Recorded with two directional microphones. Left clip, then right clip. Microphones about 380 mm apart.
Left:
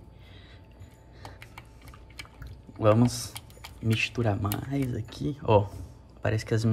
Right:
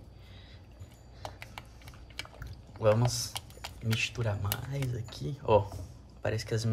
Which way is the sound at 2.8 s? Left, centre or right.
Centre.